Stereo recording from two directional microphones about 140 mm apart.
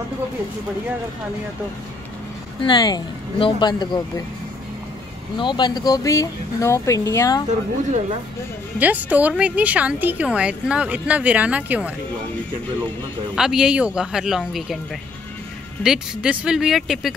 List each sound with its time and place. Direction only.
2.6 s speech: 30° left (ahead or behind)
5.4 s speech: 35° left (ahead or behind)
8.7 s a woman's voice: 10° right (ahead or behind)
13.3 s speech: 5° right (ahead or behind)
15.8 s speech: 5° right (ahead or behind)